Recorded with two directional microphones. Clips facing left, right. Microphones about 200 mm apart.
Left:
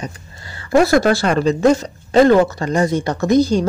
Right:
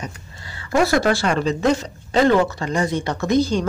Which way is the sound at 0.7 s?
40° left (ahead or behind).